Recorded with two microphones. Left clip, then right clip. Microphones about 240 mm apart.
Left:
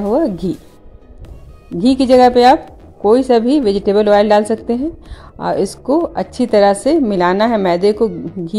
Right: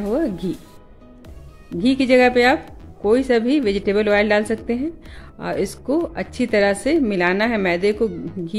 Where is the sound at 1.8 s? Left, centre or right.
Centre.